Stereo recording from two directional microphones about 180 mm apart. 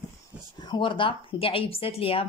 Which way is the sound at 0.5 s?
25° left (ahead or behind).